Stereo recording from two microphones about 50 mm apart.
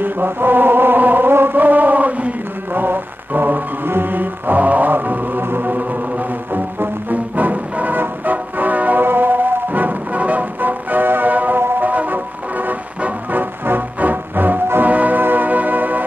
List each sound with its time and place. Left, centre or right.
0.0 s music: right